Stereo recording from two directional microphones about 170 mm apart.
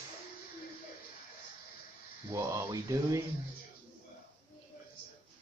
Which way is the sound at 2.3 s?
15° right (ahead or behind).